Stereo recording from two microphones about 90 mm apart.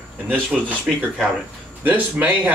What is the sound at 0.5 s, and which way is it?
Speech, centre (ahead or behind).